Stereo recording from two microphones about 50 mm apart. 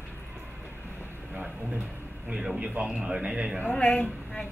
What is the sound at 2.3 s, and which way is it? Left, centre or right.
A man's voice, centre.